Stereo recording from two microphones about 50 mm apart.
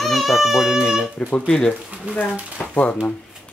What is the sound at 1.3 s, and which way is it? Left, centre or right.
Speech, left.